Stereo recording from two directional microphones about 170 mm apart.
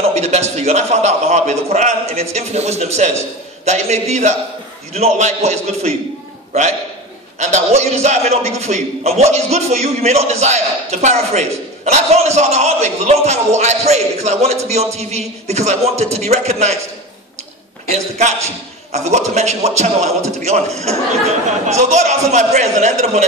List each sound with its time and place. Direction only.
0.1 s a man's voice: 40° right (ahead or behind)
7.3 s a man's voice: 40° right (ahead or behind)
17.9 s a man's voice: 40° right (ahead or behind)